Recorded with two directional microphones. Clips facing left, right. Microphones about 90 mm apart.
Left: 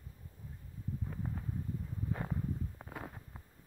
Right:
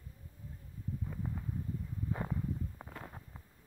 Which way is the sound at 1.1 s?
10° left (ahead or behind).